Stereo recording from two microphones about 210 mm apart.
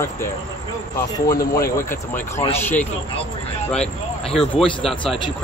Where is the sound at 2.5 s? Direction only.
10° left (ahead or behind).